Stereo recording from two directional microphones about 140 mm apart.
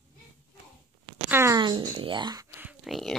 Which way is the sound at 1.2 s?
15° right (ahead or behind).